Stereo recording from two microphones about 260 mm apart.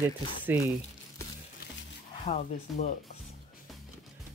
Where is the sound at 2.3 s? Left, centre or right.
Left.